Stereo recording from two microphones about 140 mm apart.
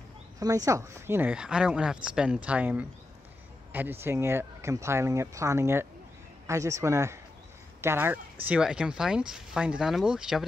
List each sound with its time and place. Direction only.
0.4 s speech: 25° right (ahead or behind)
8.5 s speech: 5° right (ahead or behind)